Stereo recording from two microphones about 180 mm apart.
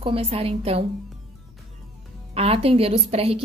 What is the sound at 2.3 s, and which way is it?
A woman's voice, 35° right (ahead or behind).